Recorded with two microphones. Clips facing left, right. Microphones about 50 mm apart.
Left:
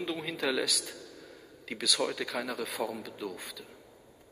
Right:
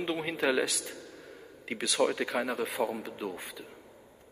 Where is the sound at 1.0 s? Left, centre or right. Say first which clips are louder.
Right 2 dB; right.